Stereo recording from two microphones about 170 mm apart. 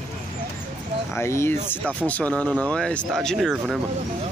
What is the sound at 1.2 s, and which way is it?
Speech, 15° left (ahead or behind).